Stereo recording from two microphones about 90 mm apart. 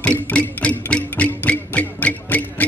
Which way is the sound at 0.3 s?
15° left (ahead or behind).